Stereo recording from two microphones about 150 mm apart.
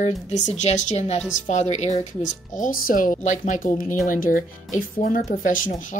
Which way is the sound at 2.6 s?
60° left (ahead or behind).